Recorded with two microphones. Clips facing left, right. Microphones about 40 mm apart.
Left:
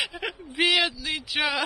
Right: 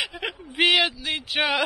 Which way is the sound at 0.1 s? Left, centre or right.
Right.